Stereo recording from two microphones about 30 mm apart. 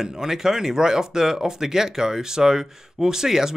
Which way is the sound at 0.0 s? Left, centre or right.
Centre.